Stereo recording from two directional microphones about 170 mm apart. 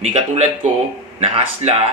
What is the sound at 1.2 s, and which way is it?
Speech, 35° right (ahead or behind).